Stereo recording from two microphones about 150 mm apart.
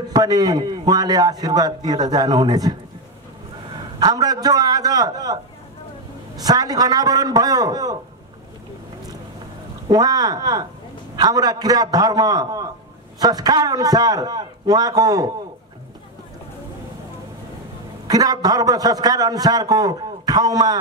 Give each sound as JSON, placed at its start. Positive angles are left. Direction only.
{"t": 0.1, "sound": "a man's voice", "side_deg": -25}
{"t": 4.0, "sound": "a man's voice", "side_deg": -25}
{"t": 9.8, "sound": "a man's voice", "side_deg": -25}
{"t": 18.0, "sound": "a man's voice", "side_deg": -25}